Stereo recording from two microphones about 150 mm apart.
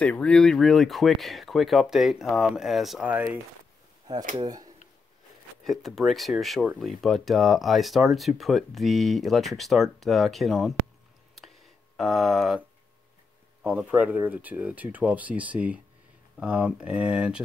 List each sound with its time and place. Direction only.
0.0 s speech: 5° left (ahead or behind); by 3.3 s 10° right (ahead or behind)
4.4 s speech: 25° right (ahead or behind)
5.6 s speech: centre (ahead or behind)
12.0 s speech: centre (ahead or behind)
13.7 s speech: 10° right (ahead or behind)